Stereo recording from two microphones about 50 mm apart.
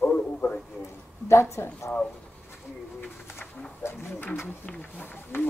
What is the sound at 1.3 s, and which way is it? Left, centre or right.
Speech, left.